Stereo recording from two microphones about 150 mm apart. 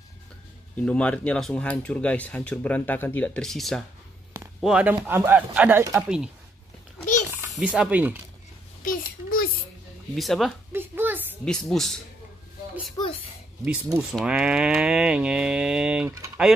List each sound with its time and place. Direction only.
0.7 s speech: 10° left (ahead or behind)
7.5 s speech: 5° right (ahead or behind)
8.8 s a child's voice: 65° left (ahead or behind)
10.1 s speech: centre (ahead or behind)
10.7 s a sound: 15° right (ahead or behind)
11.4 s speech: centre (ahead or behind)
14.1 s speech: 5° right (ahead or behind)